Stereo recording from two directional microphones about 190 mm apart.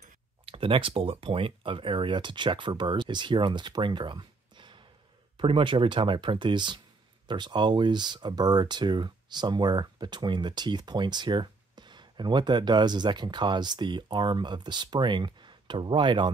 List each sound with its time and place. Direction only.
0.5 s speech: 30° right (ahead or behind)